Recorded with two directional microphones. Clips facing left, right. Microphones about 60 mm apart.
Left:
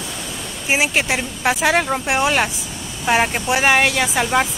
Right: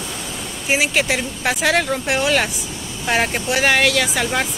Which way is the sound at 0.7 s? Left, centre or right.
Centre.